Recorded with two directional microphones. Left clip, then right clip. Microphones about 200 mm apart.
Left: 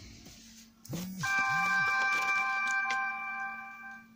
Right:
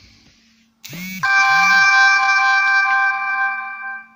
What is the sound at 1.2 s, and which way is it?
Music, 55° right (ahead or behind).